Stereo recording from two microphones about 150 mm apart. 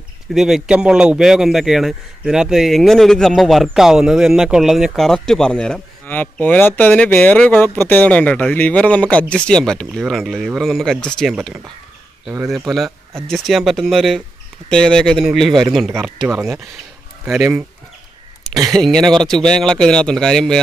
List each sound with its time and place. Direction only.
0.3 s a man's voice: 5° right (ahead or behind)
16.3 s speech: 15° right (ahead or behind)
18.8 s a man's voice: 5° left (ahead or behind)